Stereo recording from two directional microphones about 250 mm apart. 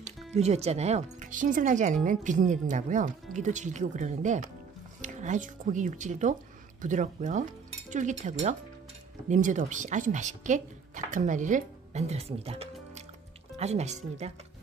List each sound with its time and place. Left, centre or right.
0.0 s speech: right